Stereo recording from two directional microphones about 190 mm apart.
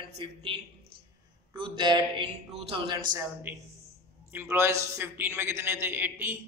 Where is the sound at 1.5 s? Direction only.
25° right (ahead or behind).